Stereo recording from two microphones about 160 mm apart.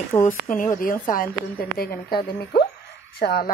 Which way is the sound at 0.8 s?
60° left (ahead or behind).